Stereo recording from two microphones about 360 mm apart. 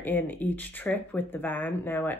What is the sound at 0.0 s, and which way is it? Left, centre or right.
Speech, centre.